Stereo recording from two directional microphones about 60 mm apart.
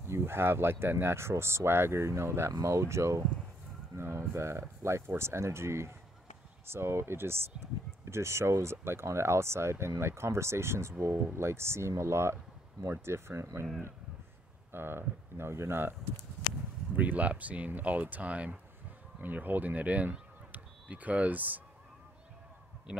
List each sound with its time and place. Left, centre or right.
0.1 s speech: right
14.7 s speech: right
16.9 s speech: right
22.9 s speech: centre